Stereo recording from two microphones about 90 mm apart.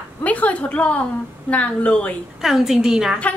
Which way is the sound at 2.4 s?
5° right (ahead or behind).